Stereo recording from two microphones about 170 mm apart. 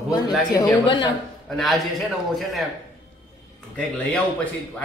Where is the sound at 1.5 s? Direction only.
Centre (ahead or behind).